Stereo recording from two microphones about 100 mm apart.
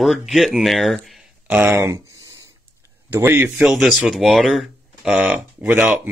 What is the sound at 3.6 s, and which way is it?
Speech, 5° right (ahead or behind).